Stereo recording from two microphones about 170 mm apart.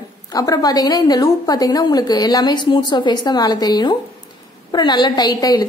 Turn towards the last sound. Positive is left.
turn(degrees=25)  # may be behind; listen again after turning